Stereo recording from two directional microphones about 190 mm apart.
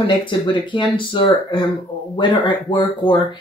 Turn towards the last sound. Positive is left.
turn(degrees=25)  # may be behind; listen again after turning